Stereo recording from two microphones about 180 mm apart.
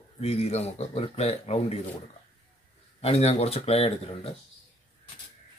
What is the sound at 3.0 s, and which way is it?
Speech, 35° left (ahead or behind).